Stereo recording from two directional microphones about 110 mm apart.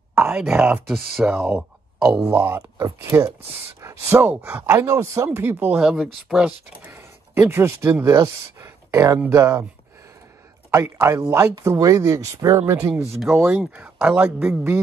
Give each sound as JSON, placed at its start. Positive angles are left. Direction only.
{"t": 0.2, "sound": "speech", "side_deg": -10}
{"t": 2.2, "sound": "speech", "side_deg": -20}
{"t": 4.7, "sound": "speech", "side_deg": -25}
{"t": 5.8, "sound": "speech", "side_deg": -5}
{"t": 6.8, "sound": "speech", "side_deg": -20}
{"t": 10.7, "sound": "speech", "side_deg": -25}
{"t": 13.4, "sound": "speech", "side_deg": -10}